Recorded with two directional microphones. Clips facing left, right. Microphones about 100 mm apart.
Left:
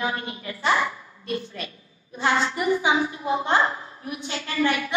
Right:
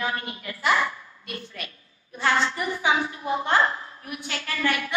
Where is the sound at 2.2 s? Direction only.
15° left (ahead or behind).